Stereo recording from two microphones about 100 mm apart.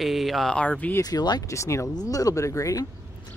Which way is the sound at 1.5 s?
30° left (ahead or behind).